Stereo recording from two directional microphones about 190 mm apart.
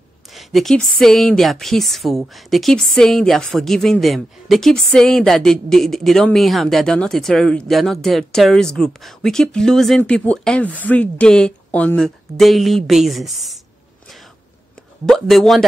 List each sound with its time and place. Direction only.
0.3 s speech: centre (ahead or behind)
15.0 s speech: centre (ahead or behind)